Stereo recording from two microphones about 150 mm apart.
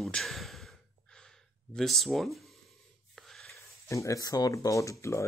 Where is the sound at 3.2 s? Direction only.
Centre (ahead or behind).